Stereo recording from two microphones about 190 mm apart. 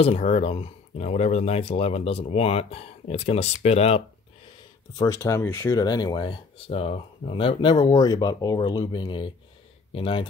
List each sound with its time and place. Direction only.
0.0 s speech: 30° left (ahead or behind)
4.9 s speech: 15° left (ahead or behind)